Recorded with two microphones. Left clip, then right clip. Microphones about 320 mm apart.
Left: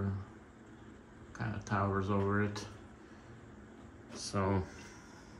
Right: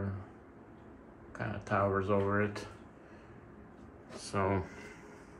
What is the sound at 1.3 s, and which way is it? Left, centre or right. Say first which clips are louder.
Speech: right 4 dB; centre.